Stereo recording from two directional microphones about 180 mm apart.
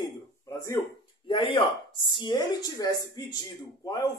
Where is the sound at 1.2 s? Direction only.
30° left (ahead or behind).